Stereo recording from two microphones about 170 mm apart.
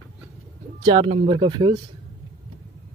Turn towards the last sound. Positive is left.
turn(degrees=-25)  # may be behind; listen again after turning